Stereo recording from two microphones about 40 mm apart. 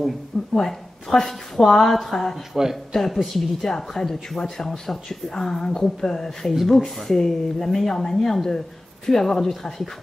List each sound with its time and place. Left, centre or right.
0.6 s speech: centre
2.5 s speech: centre
2.9 s speech: centre